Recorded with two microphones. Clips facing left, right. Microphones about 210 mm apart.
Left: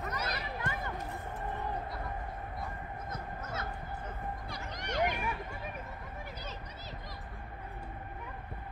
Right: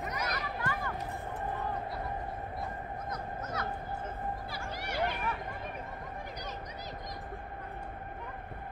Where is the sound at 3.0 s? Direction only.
25° left (ahead or behind).